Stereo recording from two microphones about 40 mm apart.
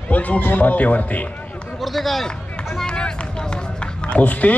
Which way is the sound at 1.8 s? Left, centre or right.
Centre.